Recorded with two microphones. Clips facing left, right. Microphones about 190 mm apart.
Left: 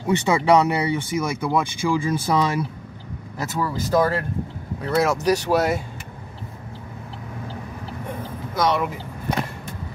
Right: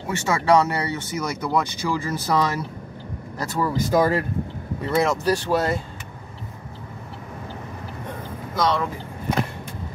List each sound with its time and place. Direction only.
0.1 s speech: 15° left (ahead or behind)
3.5 s speech: 10° right (ahead or behind)
4.8 s speech: centre (ahead or behind)
5.2 s speech: 15° left (ahead or behind)
8.5 s speech: 10° left (ahead or behind)